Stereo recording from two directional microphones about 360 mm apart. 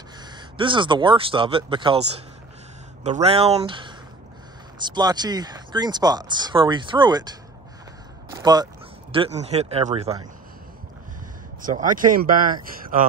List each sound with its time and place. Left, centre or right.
0.2 s speech: centre
8.3 s a sound: centre
9.1 s speech: centre
11.6 s speech: right